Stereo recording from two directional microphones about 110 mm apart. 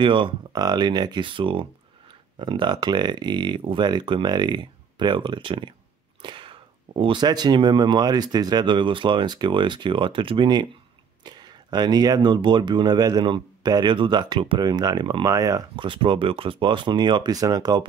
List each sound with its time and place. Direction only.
0.0 s speech: 50° right (ahead or behind)
6.2 s a sound: 50° right (ahead or behind)
7.2 s speech: 40° right (ahead or behind)
15.7 s speech: 50° right (ahead or behind)